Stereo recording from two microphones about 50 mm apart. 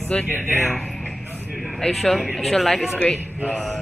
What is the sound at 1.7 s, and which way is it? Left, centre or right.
Speech, centre.